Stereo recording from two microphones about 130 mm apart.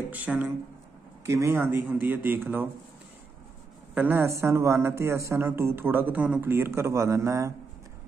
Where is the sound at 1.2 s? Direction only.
20° right (ahead or behind).